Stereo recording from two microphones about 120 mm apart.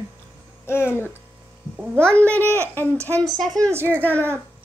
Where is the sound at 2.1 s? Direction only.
10° left (ahead or behind).